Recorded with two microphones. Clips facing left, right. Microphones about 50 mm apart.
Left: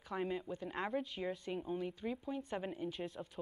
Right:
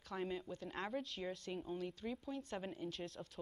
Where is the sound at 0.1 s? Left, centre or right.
Centre.